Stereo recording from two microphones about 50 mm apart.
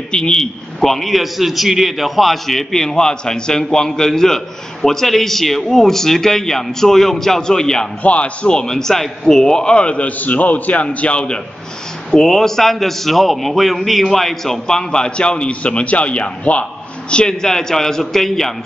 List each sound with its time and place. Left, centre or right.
0.1 s a man's voice: centre
0.7 s a man's voice: centre
8.0 s a man's voice: left
12.1 s a man's voice: centre; by 16.6 s left
17.1 s a man's voice: centre